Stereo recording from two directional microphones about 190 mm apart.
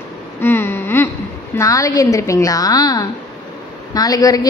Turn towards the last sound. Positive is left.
turn(degrees=20)  # may be behind; listen again after turning